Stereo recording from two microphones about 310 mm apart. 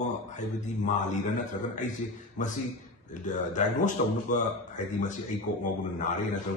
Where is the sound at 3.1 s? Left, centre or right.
Left.